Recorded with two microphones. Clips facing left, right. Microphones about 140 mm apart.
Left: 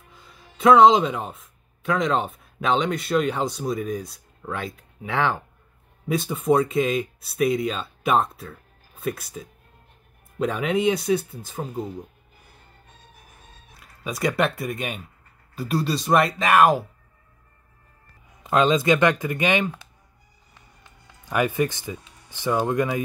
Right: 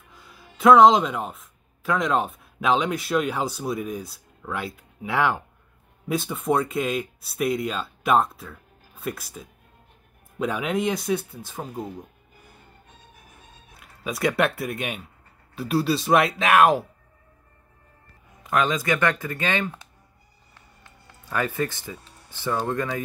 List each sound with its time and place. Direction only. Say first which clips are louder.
0.1 s speech: right 3 dB; 5° right (ahead or behind)
13.7 s speech: even; centre (ahead or behind)
18.4 s speech: left 4 dB; 25° left (ahead or behind)
21.3 s speech: left 4 dB; 15° left (ahead or behind)